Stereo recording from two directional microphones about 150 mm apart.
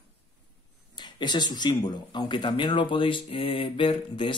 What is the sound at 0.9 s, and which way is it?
Speech, 30° left (ahead or behind).